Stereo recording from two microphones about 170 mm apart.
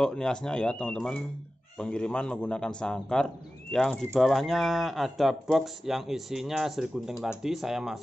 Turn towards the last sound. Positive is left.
turn(degrees=0)  # may be behind; listen again after turning